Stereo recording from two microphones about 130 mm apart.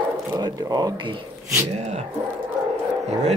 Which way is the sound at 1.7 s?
60° right (ahead or behind).